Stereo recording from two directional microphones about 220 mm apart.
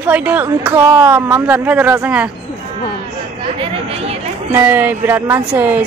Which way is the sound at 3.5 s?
25° right (ahead or behind).